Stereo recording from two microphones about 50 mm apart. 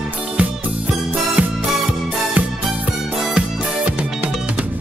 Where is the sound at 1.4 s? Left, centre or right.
Right.